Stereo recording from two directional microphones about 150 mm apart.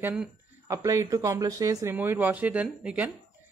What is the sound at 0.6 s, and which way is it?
Speech, 20° right (ahead or behind).